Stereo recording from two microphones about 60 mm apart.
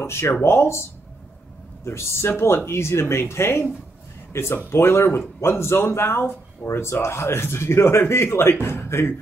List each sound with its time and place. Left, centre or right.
0.0 s speech: left
1.9 s speech: left